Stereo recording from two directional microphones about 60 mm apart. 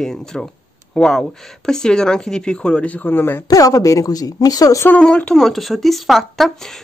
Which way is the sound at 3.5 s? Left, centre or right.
Left.